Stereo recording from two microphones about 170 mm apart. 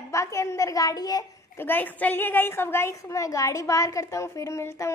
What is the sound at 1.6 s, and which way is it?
A woman's voice, 10° left (ahead or behind).